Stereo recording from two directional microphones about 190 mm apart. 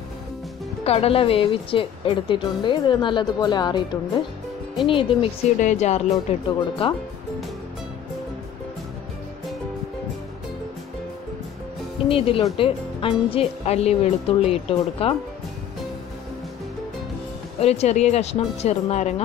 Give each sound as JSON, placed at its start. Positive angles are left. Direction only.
{"t": 0.8, "sound": "speech", "side_deg": 30}
{"t": 5.6, "sound": "a woman's voice", "side_deg": 40}
{"t": 12.1, "sound": "a woman's voice", "side_deg": 30}
{"t": 17.6, "sound": "a woman's voice", "side_deg": 35}